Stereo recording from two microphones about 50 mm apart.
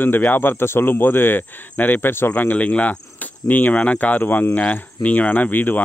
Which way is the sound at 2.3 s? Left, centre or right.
Left.